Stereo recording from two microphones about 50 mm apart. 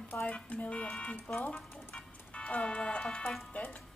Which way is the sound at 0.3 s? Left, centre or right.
Left.